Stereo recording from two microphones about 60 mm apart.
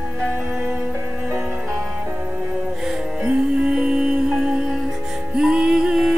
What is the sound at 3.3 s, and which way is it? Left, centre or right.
Music, centre.